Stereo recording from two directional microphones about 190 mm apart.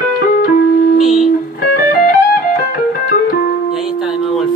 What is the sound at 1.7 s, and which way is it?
Music, 50° left (ahead or behind).